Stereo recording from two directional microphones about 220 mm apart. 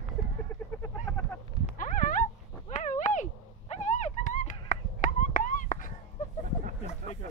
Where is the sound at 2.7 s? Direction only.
35° left (ahead or behind).